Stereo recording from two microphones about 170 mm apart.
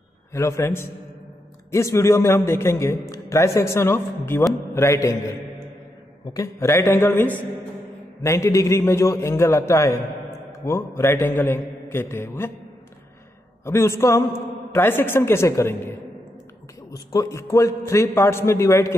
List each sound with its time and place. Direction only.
0.3 s a man's voice: 15° left (ahead or behind)
13.7 s a man's voice: 15° left (ahead or behind)